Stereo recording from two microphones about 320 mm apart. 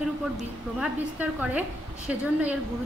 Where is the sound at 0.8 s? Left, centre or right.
Centre.